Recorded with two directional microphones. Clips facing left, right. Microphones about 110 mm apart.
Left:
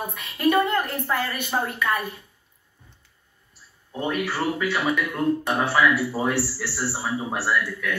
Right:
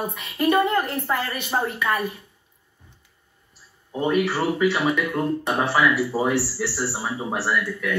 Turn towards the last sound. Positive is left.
turn(degrees=-5)  # may be behind; listen again after turning